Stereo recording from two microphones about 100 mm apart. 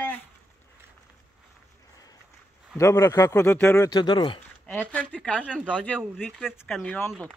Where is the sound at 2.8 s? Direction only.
30° left (ahead or behind).